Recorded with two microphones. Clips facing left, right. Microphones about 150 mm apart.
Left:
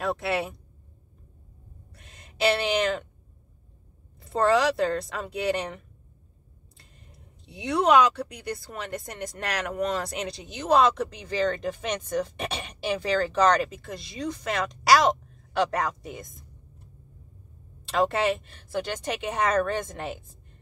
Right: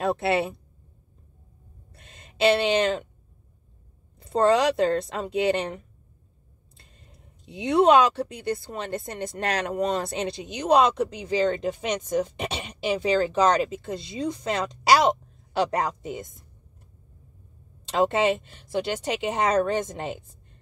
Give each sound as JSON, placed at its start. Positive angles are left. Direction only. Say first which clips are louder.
{"t": 0.0, "sound": "speech", "louder": "right 4 dB", "side_deg": -25}
{"t": 2.1, "sound": "speech", "louder": "right 4 dB", "side_deg": -20}
{"t": 4.2, "sound": "speech", "louder": "right 2 dB", "side_deg": -20}
{"t": 7.4, "sound": "speech", "louder": "right 4 dB", "side_deg": -20}
{"t": 17.9, "sound": "speech", "louder": "right 2 dB", "side_deg": -20}